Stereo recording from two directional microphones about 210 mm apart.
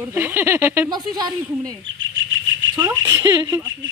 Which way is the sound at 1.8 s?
65° right (ahead or behind).